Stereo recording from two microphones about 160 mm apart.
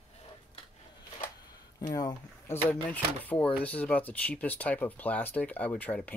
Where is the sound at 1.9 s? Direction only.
20° left (ahead or behind).